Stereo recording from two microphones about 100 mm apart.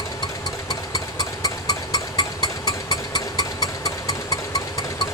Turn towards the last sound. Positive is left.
turn(degrees=35)  # may be behind; listen again after turning